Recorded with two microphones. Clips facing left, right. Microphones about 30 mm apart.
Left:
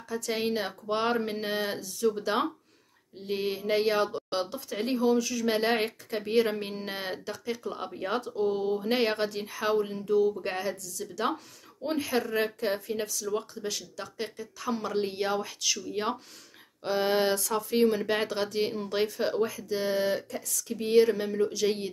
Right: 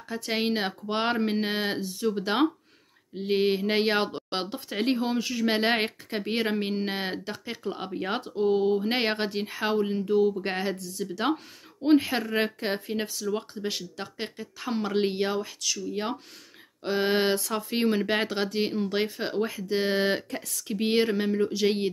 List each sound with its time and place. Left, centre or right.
0.1 s speech: right
15.3 s speech: centre
16.8 s speech: right